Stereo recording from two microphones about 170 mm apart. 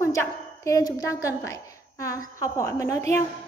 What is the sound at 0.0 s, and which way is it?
A woman's voice, 15° left (ahead or behind).